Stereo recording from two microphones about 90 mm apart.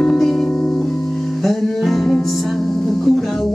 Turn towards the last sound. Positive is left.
turn(degrees=0)  # may be behind; listen again after turning